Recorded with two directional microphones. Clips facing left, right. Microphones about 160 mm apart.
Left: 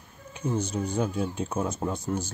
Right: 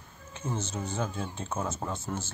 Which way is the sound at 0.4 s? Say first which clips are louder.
Left 6 dB; 15° left (ahead or behind).